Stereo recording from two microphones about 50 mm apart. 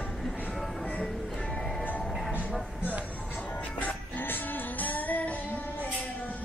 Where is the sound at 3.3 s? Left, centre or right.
Left.